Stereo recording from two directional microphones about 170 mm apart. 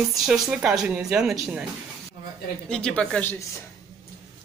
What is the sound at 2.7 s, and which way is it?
Speech, 5° left (ahead or behind).